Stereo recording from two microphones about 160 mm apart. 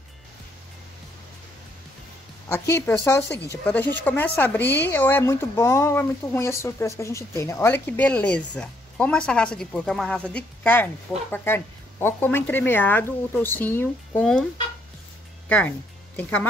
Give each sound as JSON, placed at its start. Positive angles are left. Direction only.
{"t": 2.5, "sound": "speech", "side_deg": 15}
{"t": 15.4, "sound": "speech", "side_deg": 10}